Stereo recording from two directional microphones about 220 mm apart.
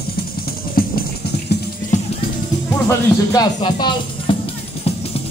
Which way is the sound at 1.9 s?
35° left (ahead or behind).